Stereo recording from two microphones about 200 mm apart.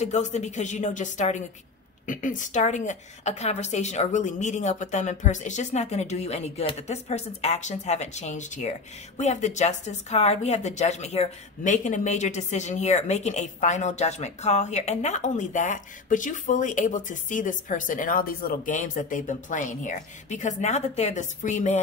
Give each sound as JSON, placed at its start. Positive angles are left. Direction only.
{"t": 0.0, "sound": "speech", "side_deg": 35}